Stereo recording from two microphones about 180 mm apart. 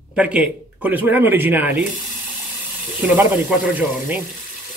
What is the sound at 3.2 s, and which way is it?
Speech, 10° right (ahead or behind).